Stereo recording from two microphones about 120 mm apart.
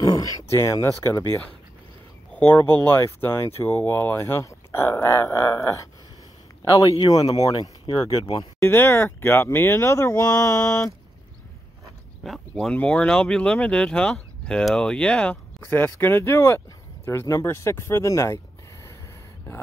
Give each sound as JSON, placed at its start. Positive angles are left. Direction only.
{"t": 0.0, "sound": "speech", "side_deg": 30}
{"t": 2.3, "sound": "speech", "side_deg": 15}
{"t": 7.3, "sound": "speech", "side_deg": 30}
{"t": 7.8, "sound": "speech", "side_deg": 45}
{"t": 8.4, "sound": "speech", "side_deg": 25}
{"t": 12.2, "sound": "speech", "side_deg": 0}